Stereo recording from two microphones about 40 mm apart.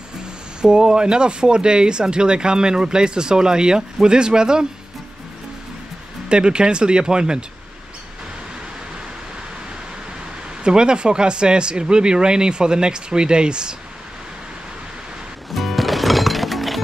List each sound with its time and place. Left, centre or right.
0.6 s speech: right
6.2 s speech: right
10.6 s speech: right
15.5 s music: centre